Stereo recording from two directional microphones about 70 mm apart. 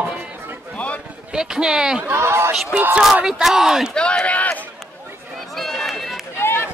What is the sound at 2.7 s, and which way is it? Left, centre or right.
Speech, right.